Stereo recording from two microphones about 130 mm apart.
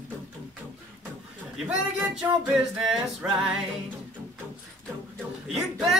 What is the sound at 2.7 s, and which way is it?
Singing, 5° right (ahead or behind).